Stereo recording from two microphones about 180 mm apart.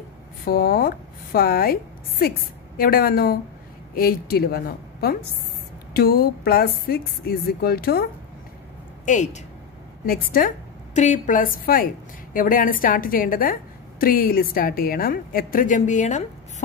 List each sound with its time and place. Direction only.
0.5 s a woman's voice: 55° left (ahead or behind)
9.0 s a woman's voice: 40° left (ahead or behind)
10.0 s a woman's voice: 55° left (ahead or behind)